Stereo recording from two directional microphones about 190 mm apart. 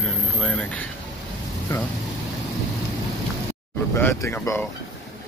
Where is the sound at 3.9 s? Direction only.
10° left (ahead or behind).